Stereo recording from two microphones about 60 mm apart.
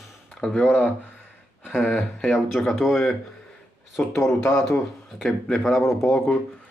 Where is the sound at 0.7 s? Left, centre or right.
Left.